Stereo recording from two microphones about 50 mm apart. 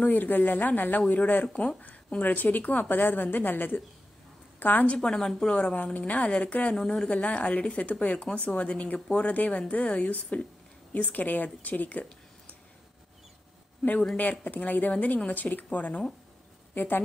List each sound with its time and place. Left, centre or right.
0.0 s a woman's voice: left
4.8 s a woman's voice: centre
6.7 s a woman's voice: centre
7.1 s a woman's voice: left
14.1 s a woman's voice: left